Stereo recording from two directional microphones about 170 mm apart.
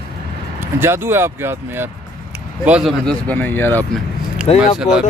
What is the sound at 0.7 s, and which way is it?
Speech, 15° right (ahead or behind).